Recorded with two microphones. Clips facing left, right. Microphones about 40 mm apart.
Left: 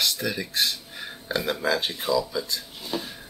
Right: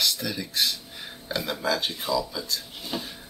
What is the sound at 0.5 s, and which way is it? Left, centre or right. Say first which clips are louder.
Speech: left 1 dB; centre.